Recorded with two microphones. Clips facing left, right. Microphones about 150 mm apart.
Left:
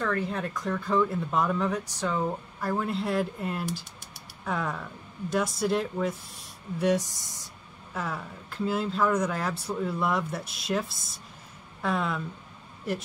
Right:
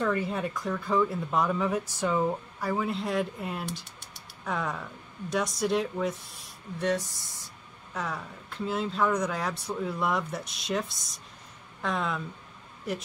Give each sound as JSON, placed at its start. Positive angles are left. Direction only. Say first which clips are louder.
{"t": 0.0, "sound": "speech", "louder": "right 1 dB", "side_deg": -10}
{"t": 6.9, "sound": "speech", "louder": "left 3 dB", "side_deg": 15}
{"t": 7.9, "sound": "speech", "louder": "left 1 dB", "side_deg": 0}